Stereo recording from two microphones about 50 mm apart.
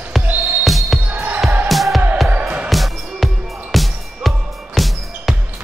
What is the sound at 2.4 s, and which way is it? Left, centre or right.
Music, right.